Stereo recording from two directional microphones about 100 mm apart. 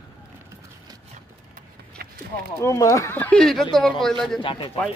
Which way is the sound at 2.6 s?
30° left (ahead or behind).